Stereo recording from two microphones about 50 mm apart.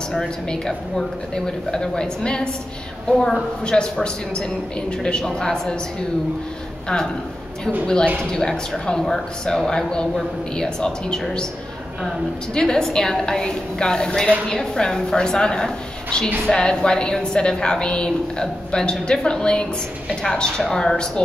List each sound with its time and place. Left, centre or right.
0.1 s a woman's voice: centre
7.8 s a woman's voice: centre
12.5 s a woman's voice: centre